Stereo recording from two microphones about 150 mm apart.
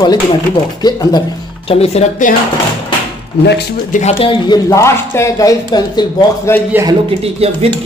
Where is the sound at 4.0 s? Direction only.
45° left (ahead or behind).